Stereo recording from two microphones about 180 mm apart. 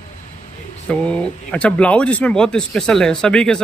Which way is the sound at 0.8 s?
5° left (ahead or behind).